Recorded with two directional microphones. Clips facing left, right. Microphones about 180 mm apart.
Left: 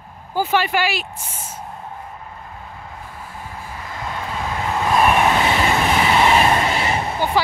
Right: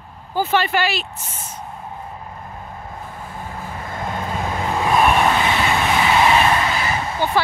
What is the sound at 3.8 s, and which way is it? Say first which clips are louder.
Vehicle: right 2 dB; 50° right (ahead or behind).